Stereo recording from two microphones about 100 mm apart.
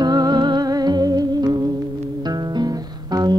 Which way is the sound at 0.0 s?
45° right (ahead or behind).